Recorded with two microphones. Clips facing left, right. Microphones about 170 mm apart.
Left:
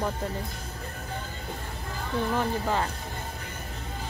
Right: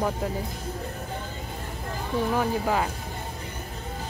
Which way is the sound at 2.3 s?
10° right (ahead or behind).